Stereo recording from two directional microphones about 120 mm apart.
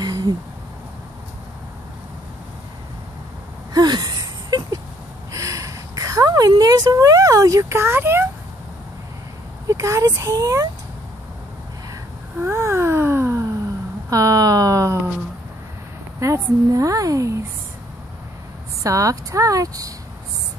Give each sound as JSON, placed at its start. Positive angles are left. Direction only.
{"t": 0.0, "sound": "owl", "side_deg": -35}
{"t": 3.7, "sound": "a sound", "side_deg": -35}
{"t": 9.7, "sound": "a woman's voice", "side_deg": -25}
{"t": 12.4, "sound": "a sound", "side_deg": -20}
{"t": 16.2, "sound": "a woman's voice", "side_deg": -25}
{"t": 18.8, "sound": "a woman's voice", "side_deg": -25}